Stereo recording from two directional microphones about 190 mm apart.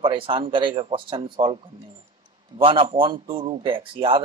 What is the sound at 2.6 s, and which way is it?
A man's voice, 30° right (ahead or behind).